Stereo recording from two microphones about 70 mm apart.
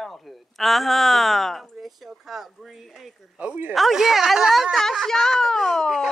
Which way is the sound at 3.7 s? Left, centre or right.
Centre.